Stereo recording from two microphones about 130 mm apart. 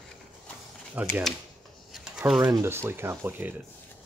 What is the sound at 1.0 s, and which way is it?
Speech, 10° right (ahead or behind).